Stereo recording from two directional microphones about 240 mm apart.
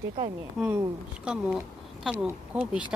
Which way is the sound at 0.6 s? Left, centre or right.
Centre.